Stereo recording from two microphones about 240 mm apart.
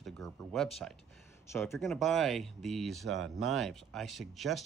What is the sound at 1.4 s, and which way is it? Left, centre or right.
Speech, centre.